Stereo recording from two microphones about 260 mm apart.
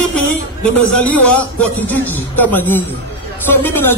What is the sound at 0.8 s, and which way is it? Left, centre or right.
Speech, centre.